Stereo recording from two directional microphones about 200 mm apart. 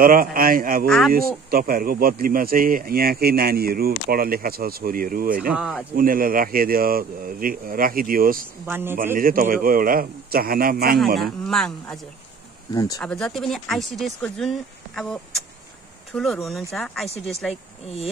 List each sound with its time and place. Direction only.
0.0 s speech: 45° right (ahead or behind)
0.8 s speech: centre (ahead or behind)
1.1 s speech: 45° right (ahead or behind)
5.5 s speech: centre (ahead or behind)
5.9 s speech: 45° right (ahead or behind)
8.6 s a man's voice: 10° right (ahead or behind)
9.1 s speech: 45° right (ahead or behind)
11.1 s speech: centre (ahead or behind)
12.7 s speech: 15° left (ahead or behind)
13.0 s speech: 5° left (ahead or behind)